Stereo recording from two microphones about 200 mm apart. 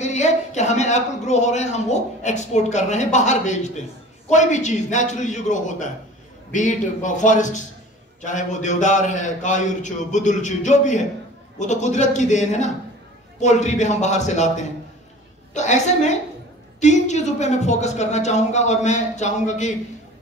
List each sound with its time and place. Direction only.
0.0 s a man's voice: 35° left (ahead or behind)